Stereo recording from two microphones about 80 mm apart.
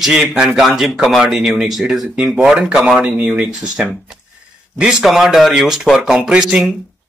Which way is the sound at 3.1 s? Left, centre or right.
Centre.